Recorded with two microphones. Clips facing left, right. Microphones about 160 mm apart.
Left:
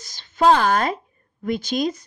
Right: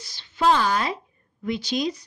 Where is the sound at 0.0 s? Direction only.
45° left (ahead or behind).